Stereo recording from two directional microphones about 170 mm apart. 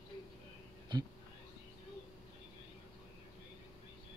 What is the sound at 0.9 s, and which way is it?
Speech, 25° right (ahead or behind).